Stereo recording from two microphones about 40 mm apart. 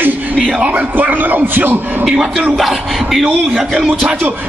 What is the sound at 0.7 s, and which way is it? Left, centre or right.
A man's voice, right.